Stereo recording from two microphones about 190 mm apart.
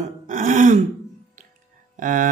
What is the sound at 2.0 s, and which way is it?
Speech, 45° right (ahead or behind).